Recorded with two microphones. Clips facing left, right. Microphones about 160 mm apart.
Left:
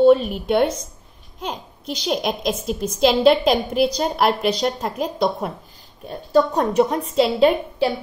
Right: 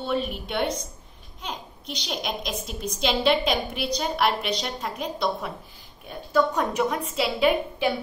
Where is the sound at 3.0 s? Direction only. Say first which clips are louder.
Left 8 dB; 45° left (ahead or behind).